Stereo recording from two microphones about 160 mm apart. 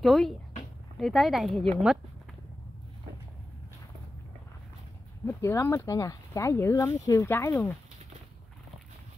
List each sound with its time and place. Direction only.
0.0 s speech: centre (ahead or behind)
5.2 s speech: 15° left (ahead or behind)